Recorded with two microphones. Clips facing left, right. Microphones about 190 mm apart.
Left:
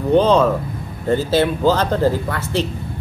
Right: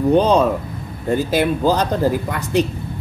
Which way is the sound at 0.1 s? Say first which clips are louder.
Left 2 dB; 15° right (ahead or behind).